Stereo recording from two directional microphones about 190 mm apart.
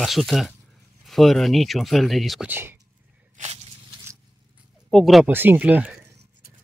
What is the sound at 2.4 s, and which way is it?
Speech, 10° right (ahead or behind).